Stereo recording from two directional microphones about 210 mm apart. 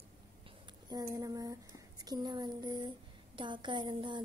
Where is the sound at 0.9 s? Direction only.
20° right (ahead or behind).